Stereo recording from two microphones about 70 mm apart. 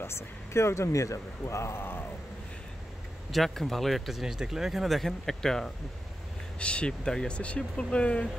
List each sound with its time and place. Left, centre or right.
0.0 s speech: left
3.3 s speech: centre